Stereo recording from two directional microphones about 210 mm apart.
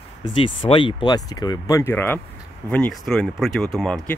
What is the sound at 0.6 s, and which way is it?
Speech, 25° left (ahead or behind).